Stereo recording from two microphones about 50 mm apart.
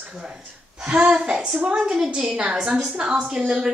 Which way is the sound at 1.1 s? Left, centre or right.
Centre.